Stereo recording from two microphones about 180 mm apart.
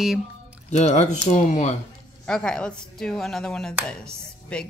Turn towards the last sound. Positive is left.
turn(degrees=5)  # may be behind; listen again after turning